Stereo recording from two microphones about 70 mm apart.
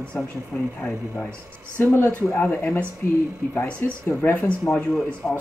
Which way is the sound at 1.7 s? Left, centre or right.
Left.